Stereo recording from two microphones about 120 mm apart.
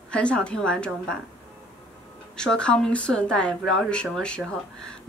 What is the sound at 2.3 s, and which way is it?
Speech, 5° left (ahead or behind).